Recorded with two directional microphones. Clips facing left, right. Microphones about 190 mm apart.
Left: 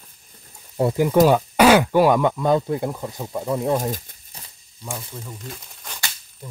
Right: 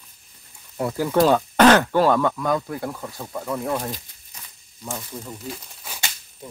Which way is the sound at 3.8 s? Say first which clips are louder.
Left 5 dB; 45° left (ahead or behind).